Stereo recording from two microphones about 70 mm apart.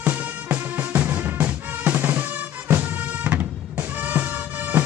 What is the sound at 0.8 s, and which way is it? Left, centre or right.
Music, right.